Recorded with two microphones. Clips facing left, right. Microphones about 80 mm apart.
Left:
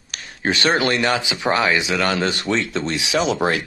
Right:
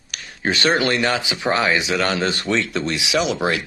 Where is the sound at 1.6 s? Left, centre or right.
Right.